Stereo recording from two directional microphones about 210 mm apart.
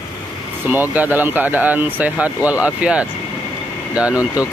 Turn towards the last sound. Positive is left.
turn(degrees=-5)  # may be behind; listen again after turning